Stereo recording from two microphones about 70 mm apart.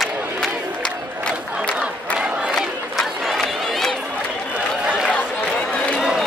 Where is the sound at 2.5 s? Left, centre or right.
Centre.